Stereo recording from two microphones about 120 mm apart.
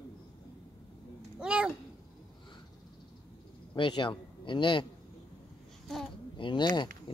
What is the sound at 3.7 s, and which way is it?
A man's voice, 45° left (ahead or behind).